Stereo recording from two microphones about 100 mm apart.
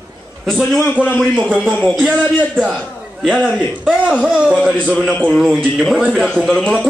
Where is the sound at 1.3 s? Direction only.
15° right (ahead or behind).